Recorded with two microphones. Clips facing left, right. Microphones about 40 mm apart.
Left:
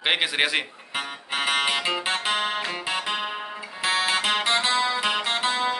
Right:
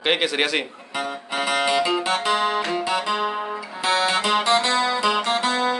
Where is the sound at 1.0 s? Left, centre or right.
Left.